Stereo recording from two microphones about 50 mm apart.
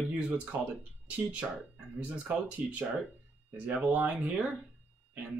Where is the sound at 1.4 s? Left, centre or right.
Centre.